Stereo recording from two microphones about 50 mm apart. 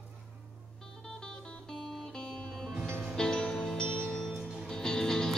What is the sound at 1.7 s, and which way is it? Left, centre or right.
Music, centre.